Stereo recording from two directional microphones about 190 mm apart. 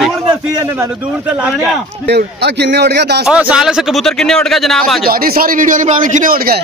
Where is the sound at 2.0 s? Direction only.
60° right (ahead or behind).